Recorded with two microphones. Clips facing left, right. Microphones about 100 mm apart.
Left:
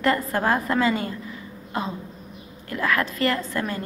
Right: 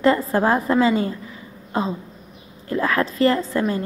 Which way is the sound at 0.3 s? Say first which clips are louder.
Right 4 dB; 30° right (ahead or behind).